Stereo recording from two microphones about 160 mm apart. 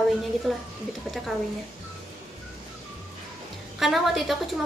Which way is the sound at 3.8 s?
Centre (ahead or behind).